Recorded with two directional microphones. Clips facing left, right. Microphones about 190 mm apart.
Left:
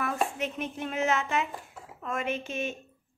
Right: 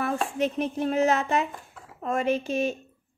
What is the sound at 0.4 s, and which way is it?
Speech, 35° right (ahead or behind).